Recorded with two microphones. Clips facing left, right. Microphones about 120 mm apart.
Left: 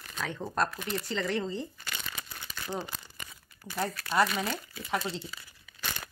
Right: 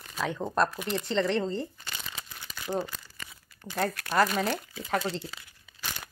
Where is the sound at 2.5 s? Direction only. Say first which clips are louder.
Right 4 dB; 10° right (ahead or behind).